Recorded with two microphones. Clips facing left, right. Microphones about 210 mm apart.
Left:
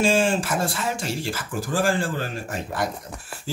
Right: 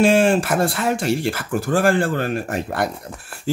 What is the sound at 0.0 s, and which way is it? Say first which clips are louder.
Speech: right 6 dB; 60° right (ahead or behind).